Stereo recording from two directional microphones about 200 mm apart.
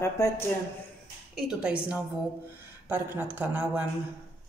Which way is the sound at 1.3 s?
5° right (ahead or behind).